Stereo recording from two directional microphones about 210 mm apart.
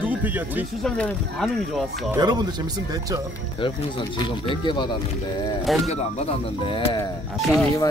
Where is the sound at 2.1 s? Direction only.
20° right (ahead or behind).